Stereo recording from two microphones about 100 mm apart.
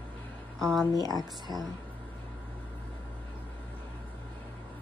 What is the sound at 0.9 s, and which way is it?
Speech, 40° right (ahead or behind).